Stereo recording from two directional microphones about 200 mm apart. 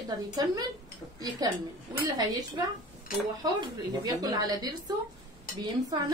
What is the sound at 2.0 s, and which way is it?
A woman's voice, 20° right (ahead or behind).